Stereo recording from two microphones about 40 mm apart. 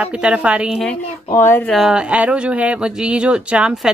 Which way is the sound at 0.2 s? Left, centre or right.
Right.